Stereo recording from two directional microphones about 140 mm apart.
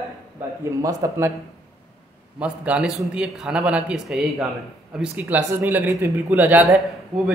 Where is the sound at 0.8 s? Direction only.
25° right (ahead or behind).